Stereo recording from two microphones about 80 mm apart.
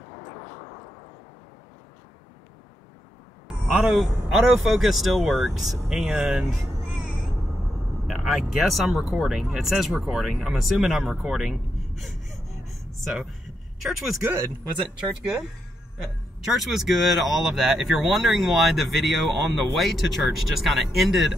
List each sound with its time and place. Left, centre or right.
0.1 s vehicle: left
3.4 s speech: centre
6.0 s speech: centre
8.1 s speech: centre
11.3 s gasp: centre
13.7 s speech: centre
15.0 s speech: centre
16.5 s speech: centre